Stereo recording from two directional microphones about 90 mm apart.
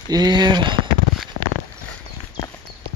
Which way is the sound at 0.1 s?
50° right (ahead or behind).